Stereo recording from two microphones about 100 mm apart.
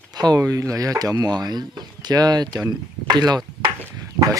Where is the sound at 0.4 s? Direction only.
35° right (ahead or behind).